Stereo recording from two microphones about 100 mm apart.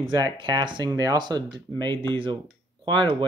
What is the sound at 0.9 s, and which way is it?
Speech, 40° right (ahead or behind).